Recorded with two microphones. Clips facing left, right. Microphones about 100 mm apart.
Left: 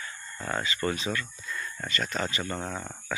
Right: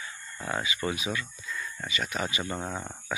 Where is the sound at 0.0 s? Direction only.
15° right (ahead or behind).